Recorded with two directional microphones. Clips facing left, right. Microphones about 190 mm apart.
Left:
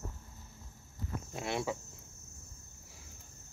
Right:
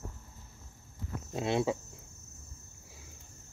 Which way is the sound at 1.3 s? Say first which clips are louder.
Right 6 dB; 25° right (ahead or behind).